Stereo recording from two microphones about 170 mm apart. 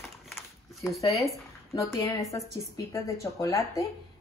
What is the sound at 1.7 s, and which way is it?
A woman's voice, 20° left (ahead or behind).